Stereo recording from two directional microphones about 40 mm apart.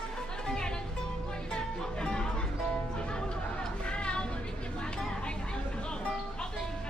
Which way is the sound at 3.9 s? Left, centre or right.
Left.